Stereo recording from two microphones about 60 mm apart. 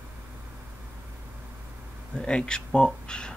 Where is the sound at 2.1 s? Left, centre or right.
Centre.